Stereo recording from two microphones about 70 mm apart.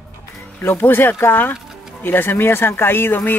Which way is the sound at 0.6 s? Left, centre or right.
Left.